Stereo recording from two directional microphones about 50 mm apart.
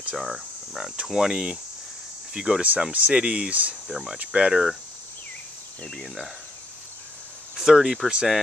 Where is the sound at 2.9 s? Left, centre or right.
Right.